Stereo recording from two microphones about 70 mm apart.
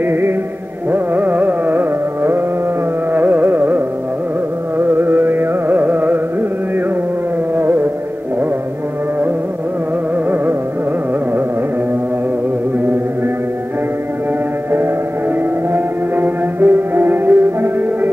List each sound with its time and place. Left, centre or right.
0.0 s music: right
3.1 s carnatic music: right
7.5 s music: right
15.7 s music: right